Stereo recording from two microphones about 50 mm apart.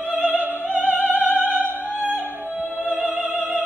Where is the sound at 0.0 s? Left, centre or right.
Right.